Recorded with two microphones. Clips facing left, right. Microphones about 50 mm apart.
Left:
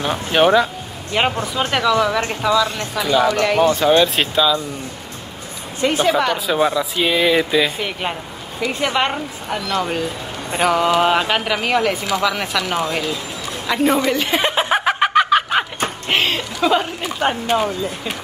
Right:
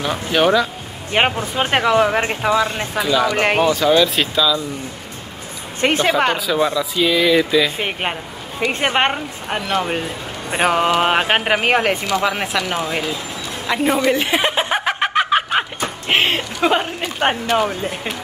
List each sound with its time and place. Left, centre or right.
0.0 s speech: left
1.1 s a man's voice: right
3.6 s speech: left
5.8 s speech: right
6.5 s speech: left
7.7 s a man's voice: right
12.2 s speech: right
14.3 s a sound: centre
15.1 s a sound: centre
16.1 s speech: right
17.5 s speech: right